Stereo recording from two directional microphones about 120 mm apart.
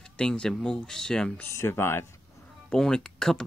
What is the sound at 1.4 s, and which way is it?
Speech, 20° left (ahead or behind).